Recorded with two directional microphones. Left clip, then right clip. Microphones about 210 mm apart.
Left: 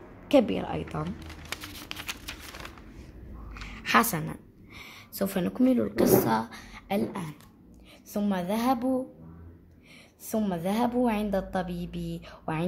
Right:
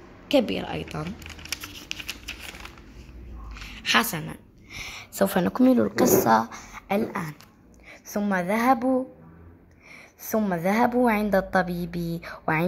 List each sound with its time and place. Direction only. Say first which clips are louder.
0.3 s a woman's voice: even; 5° right (ahead or behind)
1.7 s shuffling cards: right 3 dB; 20° left (ahead or behind)
3.5 s a sound: right 1 dB; 5° left (ahead or behind)
4.6 s a woman's voice: right 10 dB; 15° right (ahead or behind)
10.2 s a woman's voice: right 5 dB; 10° right (ahead or behind)